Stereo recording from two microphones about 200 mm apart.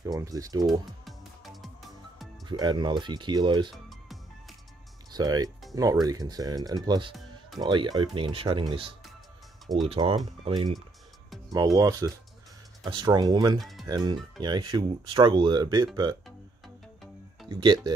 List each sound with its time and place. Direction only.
0.0 s speech: 20° right (ahead or behind)
0.7 s music: centre (ahead or behind)
2.4 s speech: 20° right (ahead or behind)
3.7 s music: centre (ahead or behind)
5.1 s speech: 20° right (ahead or behind)
13.6 s music: centre (ahead or behind)
13.8 s speech: 20° right (ahead or behind)
16.6 s music: centre (ahead or behind)
17.5 s speech: 20° right (ahead or behind)